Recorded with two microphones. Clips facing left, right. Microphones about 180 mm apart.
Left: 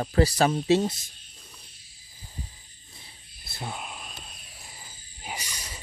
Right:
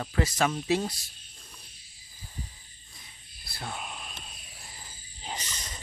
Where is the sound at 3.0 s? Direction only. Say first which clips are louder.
Left 2 dB; 25° left (ahead or behind).